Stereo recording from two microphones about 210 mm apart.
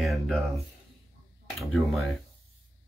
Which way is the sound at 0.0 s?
Centre (ahead or behind).